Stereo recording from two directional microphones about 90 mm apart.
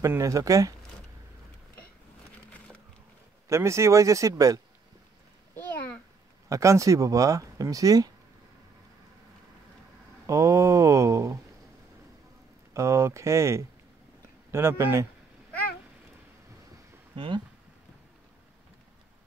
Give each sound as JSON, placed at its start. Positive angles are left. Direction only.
{"t": 0.0, "sound": "speech", "side_deg": -35}
{"t": 3.4, "sound": "speech", "side_deg": -35}
{"t": 6.5, "sound": "speech", "side_deg": -35}
{"t": 10.2, "sound": "speech", "side_deg": -35}
{"t": 12.7, "sound": "speech", "side_deg": -30}
{"t": 17.1, "sound": "speech", "side_deg": -70}